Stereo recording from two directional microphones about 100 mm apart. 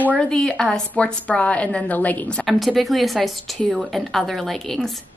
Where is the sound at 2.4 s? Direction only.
Centre (ahead or behind).